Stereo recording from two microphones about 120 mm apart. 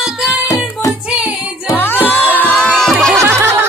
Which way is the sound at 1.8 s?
15° left (ahead or behind).